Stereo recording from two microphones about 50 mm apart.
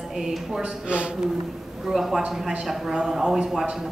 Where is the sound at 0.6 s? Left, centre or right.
Centre.